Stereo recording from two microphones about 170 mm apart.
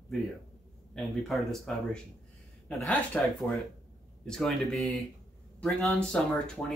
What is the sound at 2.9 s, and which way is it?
Speech, 5° left (ahead or behind).